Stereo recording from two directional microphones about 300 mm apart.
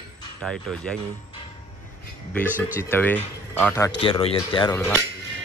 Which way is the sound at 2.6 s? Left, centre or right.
Centre.